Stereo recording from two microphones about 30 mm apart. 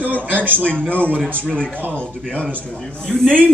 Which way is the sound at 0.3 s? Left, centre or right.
Right.